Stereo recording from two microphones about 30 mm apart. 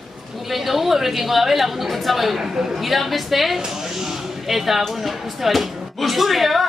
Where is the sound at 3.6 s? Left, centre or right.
Centre.